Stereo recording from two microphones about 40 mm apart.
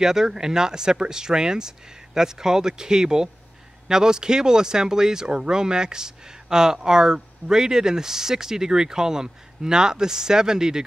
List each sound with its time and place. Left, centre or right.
0.0 s speech: centre